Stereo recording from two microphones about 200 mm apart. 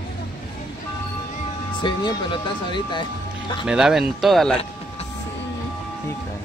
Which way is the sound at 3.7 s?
5° right (ahead or behind).